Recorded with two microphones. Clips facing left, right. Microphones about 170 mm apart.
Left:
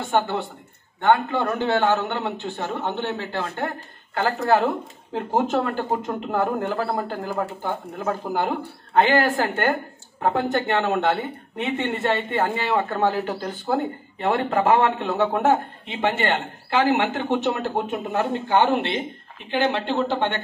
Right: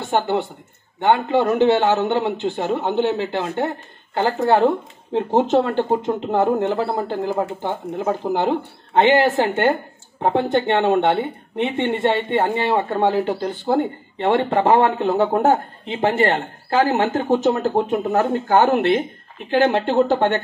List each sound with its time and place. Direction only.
1.0 s speech: 20° right (ahead or behind)
3.5 s speech: 25° right (ahead or behind); by 20.3 s 45° right (ahead or behind)